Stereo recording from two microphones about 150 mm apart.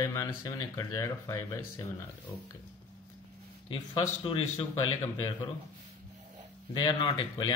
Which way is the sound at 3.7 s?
35° left (ahead or behind).